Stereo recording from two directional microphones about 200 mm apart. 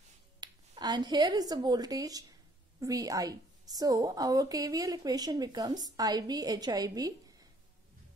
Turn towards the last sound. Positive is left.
turn(degrees=-20)  # may be behind; listen again after turning